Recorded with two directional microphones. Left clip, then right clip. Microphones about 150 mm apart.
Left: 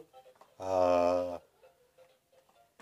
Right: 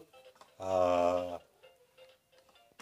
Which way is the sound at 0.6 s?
15° left (ahead or behind).